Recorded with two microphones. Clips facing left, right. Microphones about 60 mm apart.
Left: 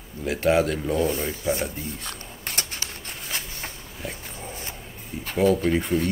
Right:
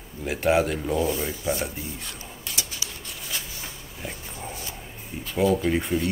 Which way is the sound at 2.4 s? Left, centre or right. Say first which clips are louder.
Left 2 dB; left.